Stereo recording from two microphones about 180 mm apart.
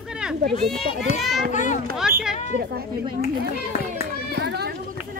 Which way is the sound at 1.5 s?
45° left (ahead or behind).